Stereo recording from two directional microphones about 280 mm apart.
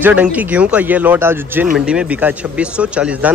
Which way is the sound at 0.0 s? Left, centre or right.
Centre.